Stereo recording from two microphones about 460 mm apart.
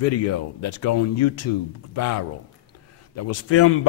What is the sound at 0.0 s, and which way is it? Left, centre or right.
Speech, left.